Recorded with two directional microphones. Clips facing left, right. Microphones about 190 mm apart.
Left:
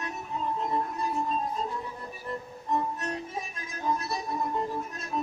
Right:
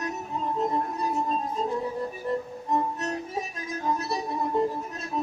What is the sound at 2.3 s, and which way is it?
Music, 35° right (ahead or behind).